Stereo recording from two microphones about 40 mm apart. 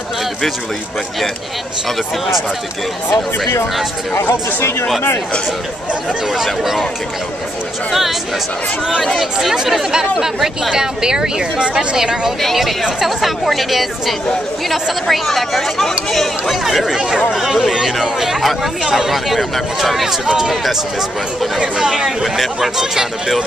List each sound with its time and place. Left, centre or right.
4.1 s speech: left
6.3 s speech: centre
9.0 s speech: centre
12.8 s speech: centre
19.1 s speech: centre
21.7 s speech: centre